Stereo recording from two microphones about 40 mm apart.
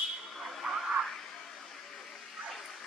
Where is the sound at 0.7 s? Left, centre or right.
Centre.